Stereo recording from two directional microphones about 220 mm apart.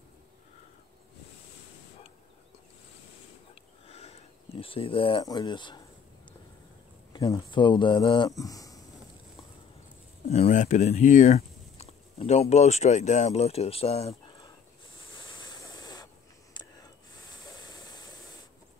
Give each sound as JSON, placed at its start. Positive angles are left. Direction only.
{"t": 3.8, "sound": "speech", "side_deg": 30}
{"t": 7.1, "sound": "speech", "side_deg": 20}
{"t": 10.3, "sound": "speech", "side_deg": 30}
{"t": 15.4, "sound": "a sound", "side_deg": 15}